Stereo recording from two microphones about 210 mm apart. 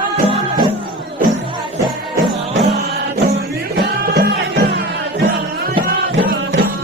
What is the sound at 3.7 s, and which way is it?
Music, 50° right (ahead or behind).